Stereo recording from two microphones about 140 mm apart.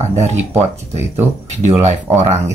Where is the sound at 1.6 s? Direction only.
55° right (ahead or behind).